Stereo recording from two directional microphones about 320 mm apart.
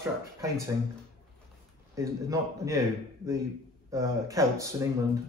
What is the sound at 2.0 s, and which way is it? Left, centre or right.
Speech, centre.